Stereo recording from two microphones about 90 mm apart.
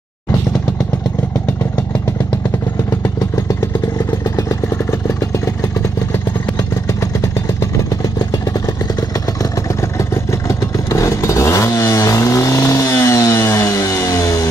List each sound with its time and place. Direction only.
9.4 s vehicle: 35° left (ahead or behind)